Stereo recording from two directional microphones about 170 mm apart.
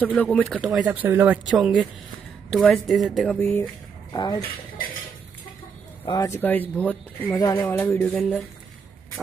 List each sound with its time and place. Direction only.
0.0 s speech: 10° left (ahead or behind)
0.6 s speech: 5° right (ahead or behind)
4.1 s speech: 25° left (ahead or behind)
6.0 s speech: 20° left (ahead or behind)